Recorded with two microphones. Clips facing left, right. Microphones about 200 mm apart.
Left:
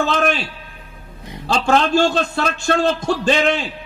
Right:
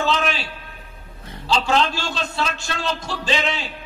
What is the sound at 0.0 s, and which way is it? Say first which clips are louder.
Speech: left 4 dB; 50° left (ahead or behind).